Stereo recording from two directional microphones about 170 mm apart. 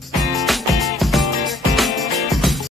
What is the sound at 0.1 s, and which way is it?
Music, centre (ahead or behind).